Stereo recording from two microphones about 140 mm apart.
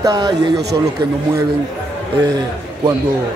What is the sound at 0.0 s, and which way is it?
Speech, 30° right (ahead or behind).